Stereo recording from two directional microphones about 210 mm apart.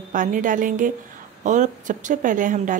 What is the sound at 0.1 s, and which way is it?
Speech, 40° right (ahead or behind).